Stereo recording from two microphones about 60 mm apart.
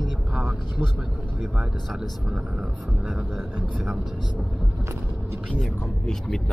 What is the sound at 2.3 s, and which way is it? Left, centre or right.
Speech, centre.